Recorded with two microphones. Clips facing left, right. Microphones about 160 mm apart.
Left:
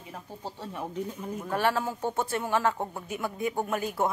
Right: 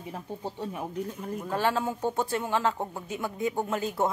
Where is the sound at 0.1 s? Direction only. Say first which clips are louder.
Right 3 dB; 20° right (ahead or behind); by 1.5 s centre (ahead or behind).